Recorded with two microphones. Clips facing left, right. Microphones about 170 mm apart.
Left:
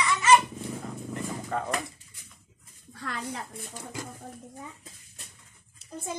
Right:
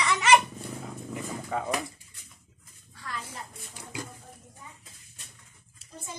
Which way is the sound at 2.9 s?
60° left (ahead or behind).